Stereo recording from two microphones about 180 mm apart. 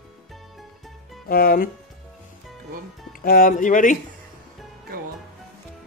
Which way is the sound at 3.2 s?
50° left (ahead or behind).